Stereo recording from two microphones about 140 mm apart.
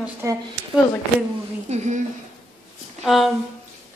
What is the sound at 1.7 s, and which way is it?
Speech, 50° right (ahead or behind).